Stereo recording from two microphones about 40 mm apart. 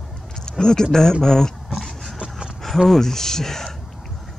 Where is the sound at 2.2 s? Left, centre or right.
Centre.